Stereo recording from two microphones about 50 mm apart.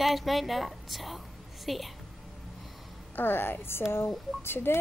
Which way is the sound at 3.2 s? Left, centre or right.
Left.